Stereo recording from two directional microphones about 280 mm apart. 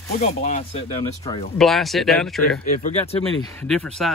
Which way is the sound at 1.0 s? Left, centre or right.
Centre.